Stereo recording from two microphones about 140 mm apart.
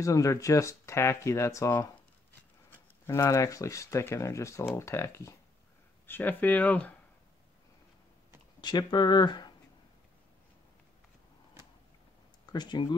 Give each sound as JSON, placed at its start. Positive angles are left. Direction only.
{"t": 0.0, "sound": "speech", "side_deg": 25}
{"t": 3.1, "sound": "speech", "side_deg": 20}
{"t": 8.5, "sound": "speech", "side_deg": 30}
{"t": 12.5, "sound": "speech", "side_deg": 35}